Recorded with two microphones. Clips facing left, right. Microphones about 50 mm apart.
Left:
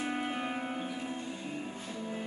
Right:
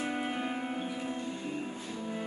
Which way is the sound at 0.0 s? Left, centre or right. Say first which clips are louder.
Right 1 dB; centre.